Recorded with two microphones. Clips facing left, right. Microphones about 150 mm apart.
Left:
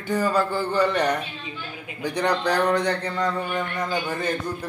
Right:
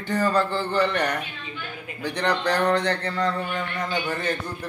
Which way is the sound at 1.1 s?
35° left (ahead or behind).